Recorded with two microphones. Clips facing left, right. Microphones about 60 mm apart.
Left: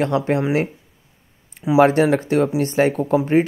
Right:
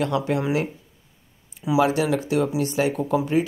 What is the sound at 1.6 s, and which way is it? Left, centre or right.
Speech, left.